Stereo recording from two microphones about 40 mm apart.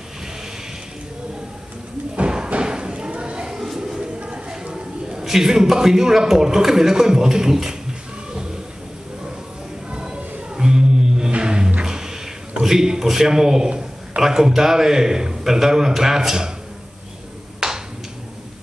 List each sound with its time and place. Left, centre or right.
2.1 s thump: right
2.6 s clip-clop: right
3.6 s a sound: centre
5.2 s a man's voice: centre
9.8 s music: right
12.6 s a man's voice: centre
13.7 s a sound: right
14.2 s a man's voice: centre
17.6 s a sound: centre